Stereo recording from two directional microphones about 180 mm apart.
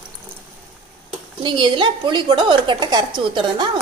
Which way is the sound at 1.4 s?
25° right (ahead or behind).